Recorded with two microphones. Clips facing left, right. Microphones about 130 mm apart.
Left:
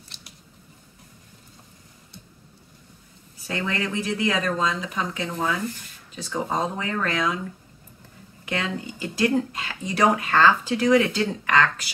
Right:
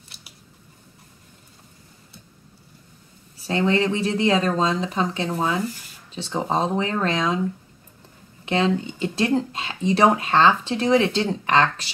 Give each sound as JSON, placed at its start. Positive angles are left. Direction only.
{"t": 3.4, "sound": "speech", "side_deg": -30}
{"t": 8.5, "sound": "speech", "side_deg": -25}